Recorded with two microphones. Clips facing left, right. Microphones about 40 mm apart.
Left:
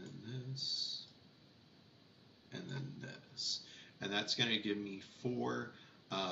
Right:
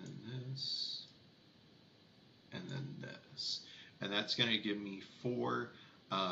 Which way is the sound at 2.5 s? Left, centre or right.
Centre.